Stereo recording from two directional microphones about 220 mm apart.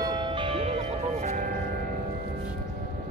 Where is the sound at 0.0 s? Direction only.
20° right (ahead or behind).